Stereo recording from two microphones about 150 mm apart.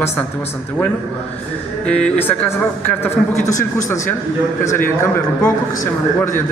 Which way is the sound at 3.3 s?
55° left (ahead or behind).